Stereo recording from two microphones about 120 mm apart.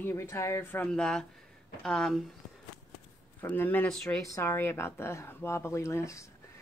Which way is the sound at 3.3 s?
15° left (ahead or behind).